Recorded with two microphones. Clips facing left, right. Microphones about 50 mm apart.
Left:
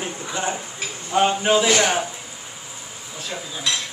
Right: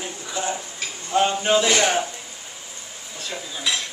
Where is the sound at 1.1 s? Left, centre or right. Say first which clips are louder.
Left 1 dB; centre.